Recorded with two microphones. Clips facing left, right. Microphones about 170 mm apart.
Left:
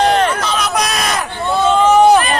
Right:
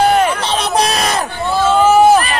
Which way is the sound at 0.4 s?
30° right (ahead or behind).